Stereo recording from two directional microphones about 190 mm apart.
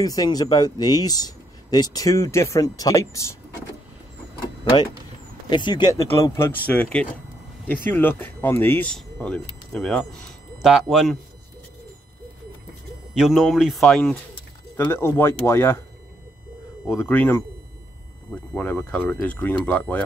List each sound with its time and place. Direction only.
0.0 s speech: 20° left (ahead or behind)
5.5 s speech: 25° left (ahead or behind); by 11.1 s centre (ahead or behind)
13.1 s speech: centre (ahead or behind); by 15.8 s 15° left (ahead or behind)
16.8 s speech: 10° left (ahead or behind)